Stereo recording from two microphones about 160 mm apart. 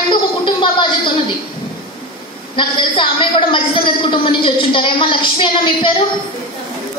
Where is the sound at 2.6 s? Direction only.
30° left (ahead or behind).